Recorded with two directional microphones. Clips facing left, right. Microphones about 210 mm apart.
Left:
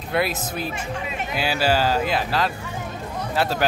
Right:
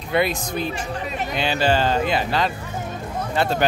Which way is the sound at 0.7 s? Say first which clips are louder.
Right 2 dB; 35° right (ahead or behind).